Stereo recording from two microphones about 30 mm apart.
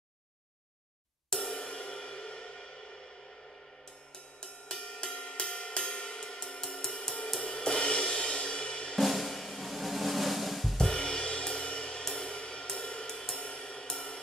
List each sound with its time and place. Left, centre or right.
1.3 s cymbal: centre
1.6 s music: left
4.4 s music: left
7.4 s cymbal: left
9.0 s drum: centre
10.8 s music: left